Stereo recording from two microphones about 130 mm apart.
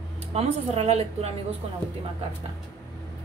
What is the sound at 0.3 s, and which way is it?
A woman's voice, 50° right (ahead or behind).